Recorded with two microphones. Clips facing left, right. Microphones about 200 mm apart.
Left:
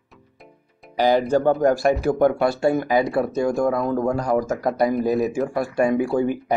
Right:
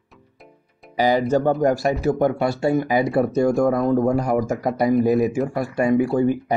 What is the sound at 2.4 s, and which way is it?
A man's voice, 10° right (ahead or behind).